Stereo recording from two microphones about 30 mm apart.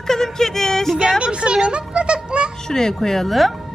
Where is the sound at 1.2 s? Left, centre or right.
Right.